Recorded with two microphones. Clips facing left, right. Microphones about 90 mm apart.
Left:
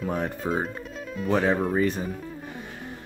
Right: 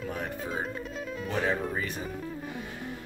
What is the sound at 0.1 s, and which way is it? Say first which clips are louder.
Speech: left 6 dB; 45° left (ahead or behind).